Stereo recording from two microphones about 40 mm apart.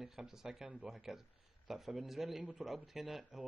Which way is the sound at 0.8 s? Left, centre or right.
Centre.